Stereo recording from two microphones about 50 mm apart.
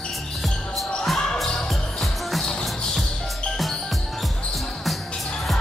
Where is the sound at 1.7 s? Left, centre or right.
Centre.